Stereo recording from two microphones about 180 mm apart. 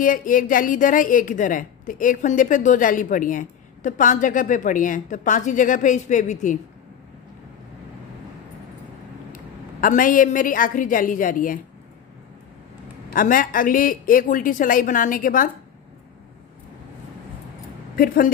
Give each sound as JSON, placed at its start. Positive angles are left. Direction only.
{"t": 0.0, "sound": "a woman's voice", "side_deg": 50}
{"t": 9.3, "sound": "a woman's voice", "side_deg": 50}
{"t": 13.1, "sound": "a woman's voice", "side_deg": 50}
{"t": 17.9, "sound": "a woman's voice", "side_deg": 55}